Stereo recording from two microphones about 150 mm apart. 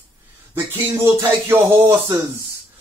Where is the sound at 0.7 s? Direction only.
15° right (ahead or behind).